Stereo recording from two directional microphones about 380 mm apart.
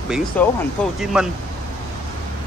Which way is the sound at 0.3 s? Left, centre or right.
Centre.